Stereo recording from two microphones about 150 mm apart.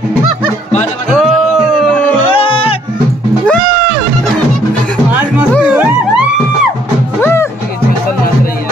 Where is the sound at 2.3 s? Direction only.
40° left (ahead or behind).